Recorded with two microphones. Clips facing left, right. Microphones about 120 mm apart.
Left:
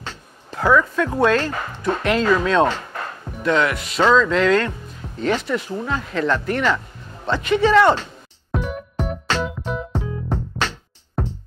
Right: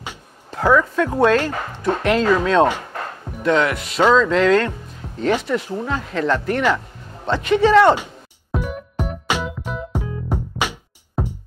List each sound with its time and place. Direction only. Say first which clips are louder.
0.5 s speech: right 1 dB; 35° right (ahead or behind)
2.8 s music: right 1 dB; 40° right (ahead or behind); by 4.0 s 55° right (ahead or behind)
4.3 s speech: right 2 dB; 45° right (ahead or behind)
7.1 s music: right 1 dB; 40° right (ahead or behind)
7.4 s speech: right 2 dB; 50° right (ahead or behind)
7.9 s music: right 2 dB; 10° right (ahead or behind)